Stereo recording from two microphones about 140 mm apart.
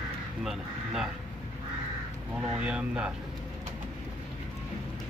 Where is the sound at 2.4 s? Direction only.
5° right (ahead or behind).